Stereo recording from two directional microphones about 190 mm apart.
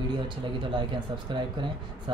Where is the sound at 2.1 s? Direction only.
25° right (ahead or behind).